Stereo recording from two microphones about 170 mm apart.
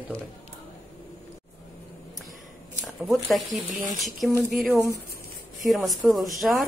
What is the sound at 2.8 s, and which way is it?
Speech, centre (ahead or behind).